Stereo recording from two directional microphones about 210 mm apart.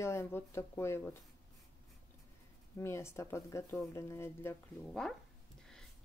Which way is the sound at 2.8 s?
10° left (ahead or behind).